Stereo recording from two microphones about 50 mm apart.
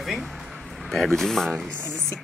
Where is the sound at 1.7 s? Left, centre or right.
Centre.